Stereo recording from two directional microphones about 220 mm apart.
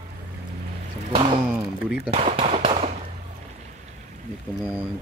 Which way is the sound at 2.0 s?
25° right (ahead or behind).